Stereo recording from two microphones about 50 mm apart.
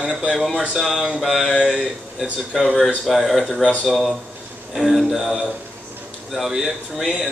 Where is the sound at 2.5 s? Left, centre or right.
Centre.